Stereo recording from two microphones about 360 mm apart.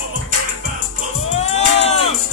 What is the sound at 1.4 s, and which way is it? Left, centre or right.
Music, centre.